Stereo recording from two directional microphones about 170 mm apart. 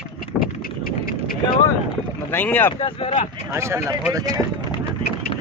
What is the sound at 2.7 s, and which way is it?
Speech, 35° left (ahead or behind).